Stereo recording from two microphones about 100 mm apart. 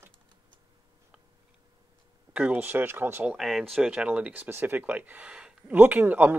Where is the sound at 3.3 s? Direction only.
Centre (ahead or behind).